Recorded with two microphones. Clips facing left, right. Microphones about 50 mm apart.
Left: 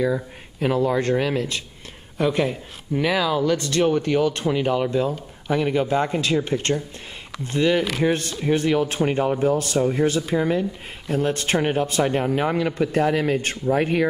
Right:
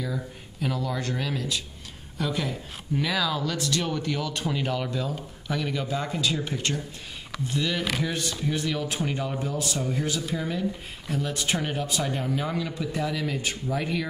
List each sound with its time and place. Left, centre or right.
0.0 s speech: left
5.5 s speech: left